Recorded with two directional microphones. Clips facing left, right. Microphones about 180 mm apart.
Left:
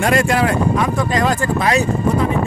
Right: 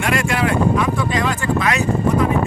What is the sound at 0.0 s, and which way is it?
Speech, 35° left (ahead or behind).